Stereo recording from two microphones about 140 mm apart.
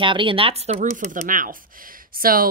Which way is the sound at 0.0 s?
35° right (ahead or behind).